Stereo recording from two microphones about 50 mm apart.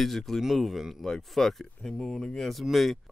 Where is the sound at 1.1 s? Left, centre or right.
Centre.